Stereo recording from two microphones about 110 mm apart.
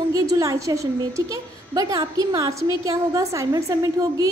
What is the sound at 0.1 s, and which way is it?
A woman's voice, 30° right (ahead or behind).